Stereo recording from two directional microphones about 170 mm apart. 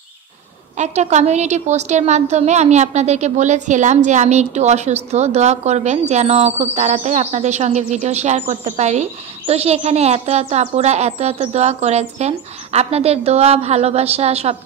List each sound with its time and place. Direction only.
0.7 s a woman's voice: 40° right (ahead or behind)